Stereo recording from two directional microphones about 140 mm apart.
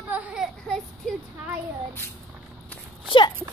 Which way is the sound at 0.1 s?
10° right (ahead or behind).